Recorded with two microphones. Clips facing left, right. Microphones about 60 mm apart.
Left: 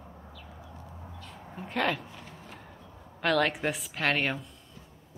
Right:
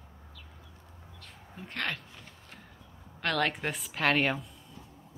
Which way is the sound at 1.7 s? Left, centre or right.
Centre.